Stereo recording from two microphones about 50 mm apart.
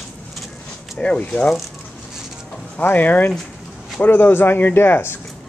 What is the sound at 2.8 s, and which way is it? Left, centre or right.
Speech, left.